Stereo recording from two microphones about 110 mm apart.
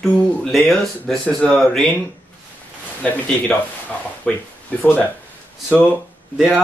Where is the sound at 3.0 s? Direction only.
15° left (ahead or behind).